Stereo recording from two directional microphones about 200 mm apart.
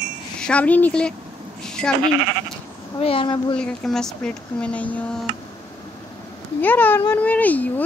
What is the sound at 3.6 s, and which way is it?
Speech, 5° left (ahead or behind).